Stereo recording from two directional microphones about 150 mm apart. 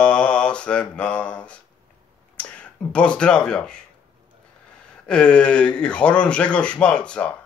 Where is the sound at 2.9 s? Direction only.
5° left (ahead or behind).